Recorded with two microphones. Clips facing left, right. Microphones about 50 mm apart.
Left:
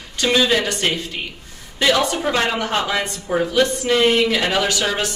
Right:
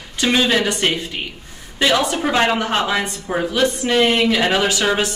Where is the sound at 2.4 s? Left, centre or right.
Centre.